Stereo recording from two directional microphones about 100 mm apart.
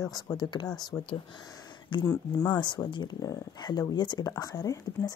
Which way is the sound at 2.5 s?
50° left (ahead or behind).